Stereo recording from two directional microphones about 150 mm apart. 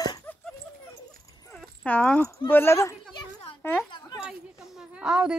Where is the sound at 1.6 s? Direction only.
10° left (ahead or behind).